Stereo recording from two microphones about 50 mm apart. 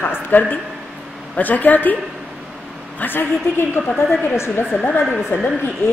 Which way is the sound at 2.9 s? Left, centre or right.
Left.